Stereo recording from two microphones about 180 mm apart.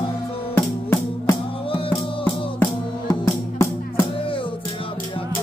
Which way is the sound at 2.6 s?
15° left (ahead or behind).